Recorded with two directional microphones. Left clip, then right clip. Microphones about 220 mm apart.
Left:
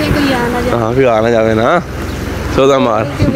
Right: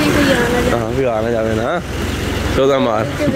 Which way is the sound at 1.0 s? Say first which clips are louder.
Left 9 dB; 25° left (ahead or behind).